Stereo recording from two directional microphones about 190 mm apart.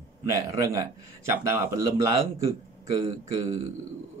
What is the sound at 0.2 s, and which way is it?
Speech, 15° right (ahead or behind).